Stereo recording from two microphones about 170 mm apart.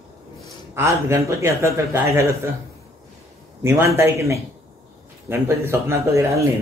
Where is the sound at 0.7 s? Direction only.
15° right (ahead or behind).